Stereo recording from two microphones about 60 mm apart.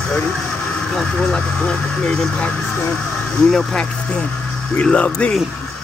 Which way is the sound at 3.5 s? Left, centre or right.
Centre.